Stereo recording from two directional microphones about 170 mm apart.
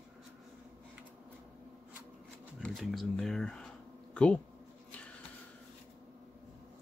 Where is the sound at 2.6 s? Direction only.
Centre (ahead or behind).